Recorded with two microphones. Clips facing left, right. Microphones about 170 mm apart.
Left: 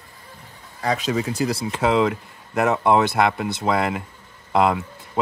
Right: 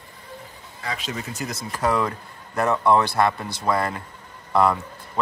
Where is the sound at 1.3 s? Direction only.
30° left (ahead or behind).